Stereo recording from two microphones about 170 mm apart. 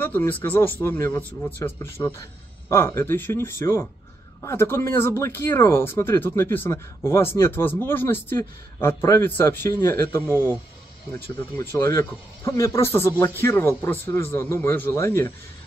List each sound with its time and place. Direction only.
0.0 s speech: 10° left (ahead or behind)
11.7 s speech: 15° left (ahead or behind)